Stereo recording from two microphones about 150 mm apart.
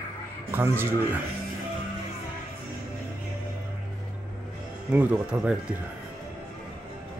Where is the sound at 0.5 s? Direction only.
15° right (ahead or behind).